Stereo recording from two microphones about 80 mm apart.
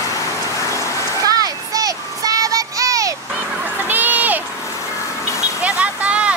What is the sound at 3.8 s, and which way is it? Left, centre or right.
Crowd, right.